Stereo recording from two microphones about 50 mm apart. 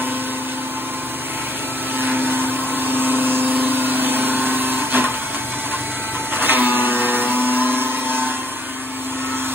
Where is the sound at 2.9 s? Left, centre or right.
Right.